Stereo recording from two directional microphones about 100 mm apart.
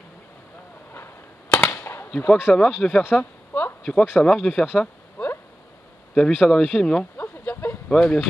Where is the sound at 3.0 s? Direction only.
20° left (ahead or behind).